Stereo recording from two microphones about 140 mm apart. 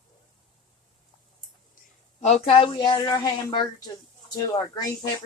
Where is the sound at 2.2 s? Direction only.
50° left (ahead or behind); by 4.9 s 30° left (ahead or behind).